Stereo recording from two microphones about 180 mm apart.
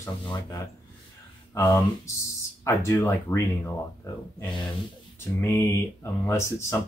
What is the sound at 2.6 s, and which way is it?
Speech, 15° left (ahead or behind).